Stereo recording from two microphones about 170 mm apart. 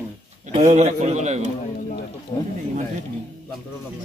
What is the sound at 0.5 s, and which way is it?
Speech, 40° right (ahead or behind).